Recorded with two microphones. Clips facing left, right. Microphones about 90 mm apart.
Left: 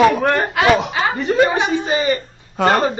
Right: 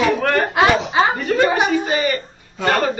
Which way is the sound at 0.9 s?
25° right (ahead or behind).